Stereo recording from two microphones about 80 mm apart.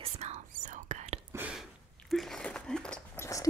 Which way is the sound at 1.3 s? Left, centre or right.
Right.